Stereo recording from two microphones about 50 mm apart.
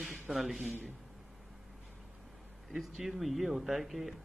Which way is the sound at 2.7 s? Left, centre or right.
Centre.